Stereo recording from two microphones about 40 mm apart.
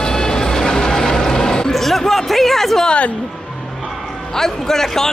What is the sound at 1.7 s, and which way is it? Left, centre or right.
Speech, centre.